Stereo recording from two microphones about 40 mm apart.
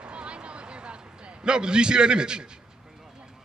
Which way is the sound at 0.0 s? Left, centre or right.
Right.